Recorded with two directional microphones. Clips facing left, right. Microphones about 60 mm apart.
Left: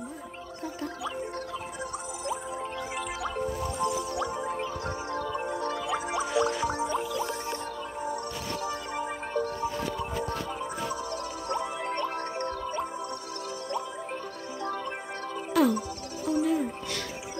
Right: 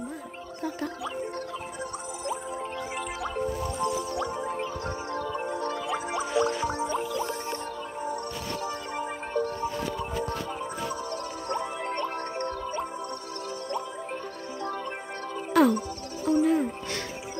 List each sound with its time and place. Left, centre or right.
3.0 s music: right
4.2 s music: centre
5.9 s music: centre
6.9 s music: right
8.6 s music: centre
11.1 s music: right
11.8 s music: right
15.5 s music: right